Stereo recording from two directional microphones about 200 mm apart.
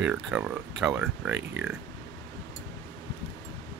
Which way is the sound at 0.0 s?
5° right (ahead or behind).